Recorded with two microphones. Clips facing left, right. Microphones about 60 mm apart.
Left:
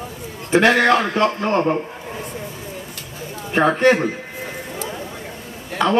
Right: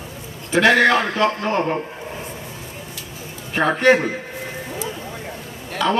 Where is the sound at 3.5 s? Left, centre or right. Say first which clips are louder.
Left 1 dB; left.